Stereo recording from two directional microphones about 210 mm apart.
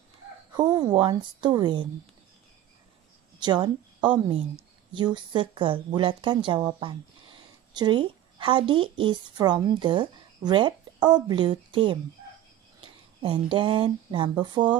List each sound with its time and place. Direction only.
0.5 s a woman's voice: 20° right (ahead or behind)
3.3 s a woman's voice: 20° right (ahead or behind)